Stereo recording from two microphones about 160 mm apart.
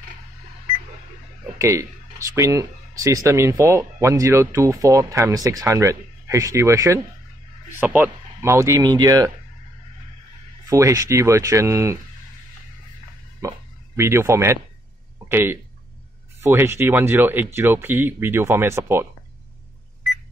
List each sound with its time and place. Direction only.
1.4 s speech: 20° right (ahead or behind)
10.7 s speech: 20° right (ahead or behind)
13.4 s speech: 15° right (ahead or behind)